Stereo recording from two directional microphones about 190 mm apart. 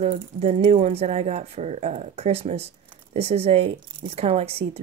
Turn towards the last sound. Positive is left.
turn(degrees=-30)  # may be behind; listen again after turning